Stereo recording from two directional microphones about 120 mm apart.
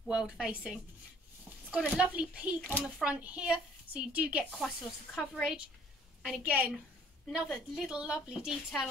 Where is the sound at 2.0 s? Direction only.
10° right (ahead or behind).